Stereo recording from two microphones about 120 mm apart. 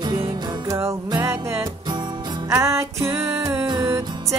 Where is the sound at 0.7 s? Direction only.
25° right (ahead or behind).